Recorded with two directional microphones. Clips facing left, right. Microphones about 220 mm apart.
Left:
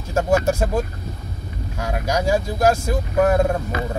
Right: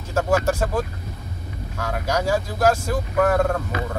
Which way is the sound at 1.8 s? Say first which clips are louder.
Left 1 dB; 15° left (ahead or behind).